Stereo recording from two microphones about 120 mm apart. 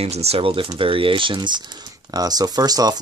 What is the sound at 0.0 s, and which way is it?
Speech, 60° right (ahead or behind).